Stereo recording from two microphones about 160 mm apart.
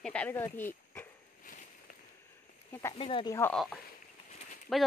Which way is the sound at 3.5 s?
5° left (ahead or behind).